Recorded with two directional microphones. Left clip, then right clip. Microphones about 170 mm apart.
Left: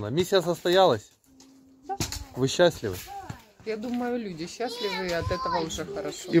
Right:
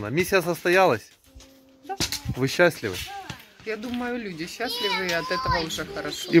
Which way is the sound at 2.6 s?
15° right (ahead or behind).